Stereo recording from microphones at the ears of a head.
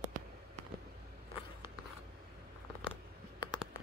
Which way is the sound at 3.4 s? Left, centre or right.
Left.